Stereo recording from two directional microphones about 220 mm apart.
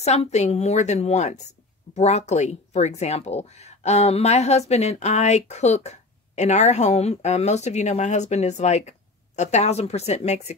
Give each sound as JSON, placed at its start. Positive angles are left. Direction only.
{"t": 0.0, "sound": "speech", "side_deg": 30}